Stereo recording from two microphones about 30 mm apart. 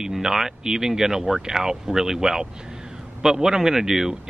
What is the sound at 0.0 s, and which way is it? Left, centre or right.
Speech, centre.